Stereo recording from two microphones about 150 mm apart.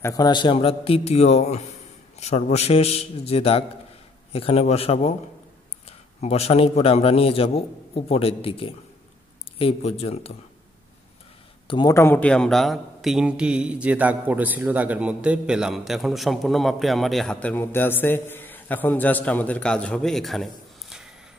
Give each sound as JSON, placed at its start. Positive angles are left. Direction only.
{"t": 0.0, "sound": "a man's voice", "side_deg": 25}
{"t": 11.6, "sound": "a sound", "side_deg": 35}
{"t": 11.9, "sound": "a man's voice", "side_deg": 15}